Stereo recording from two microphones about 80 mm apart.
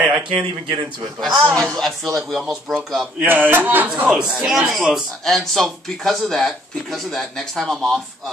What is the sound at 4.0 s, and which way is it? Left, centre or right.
A man's voice, centre.